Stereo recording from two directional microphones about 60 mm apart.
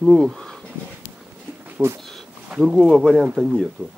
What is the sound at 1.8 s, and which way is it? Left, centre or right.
Speech, right.